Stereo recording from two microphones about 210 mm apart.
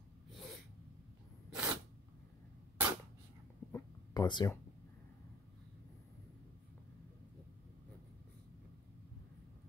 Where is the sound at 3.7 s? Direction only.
20° left (ahead or behind).